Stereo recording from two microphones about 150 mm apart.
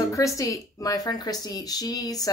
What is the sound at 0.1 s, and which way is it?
Speech, 20° left (ahead or behind).